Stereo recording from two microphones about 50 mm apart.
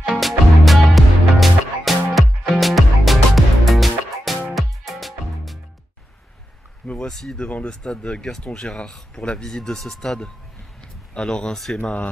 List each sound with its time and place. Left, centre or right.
0.1 s music: centre
7.1 s speech: centre
7.4 s speech: left
10.8 s a sound: centre
11.5 s speech: centre
11.8 s speech: left